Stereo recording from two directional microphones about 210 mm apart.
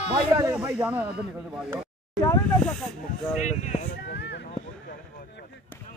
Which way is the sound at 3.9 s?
50° left (ahead or behind).